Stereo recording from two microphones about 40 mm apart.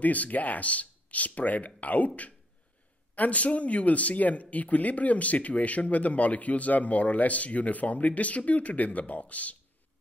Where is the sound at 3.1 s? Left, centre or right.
Left.